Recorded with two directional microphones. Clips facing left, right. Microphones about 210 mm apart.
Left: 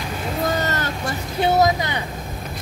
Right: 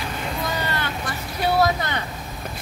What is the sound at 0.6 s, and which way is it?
Vehicle, 40° left (ahead or behind).